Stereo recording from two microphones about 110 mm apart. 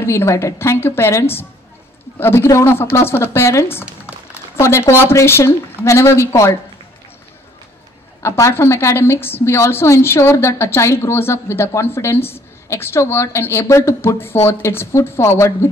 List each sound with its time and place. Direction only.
0.0 s a woman's voice: 25° left (ahead or behind)
3.8 s a sound: 10° right (ahead or behind)
4.6 s a woman's voice: 25° left (ahead or behind)
8.2 s a woman's voice: 25° left (ahead or behind)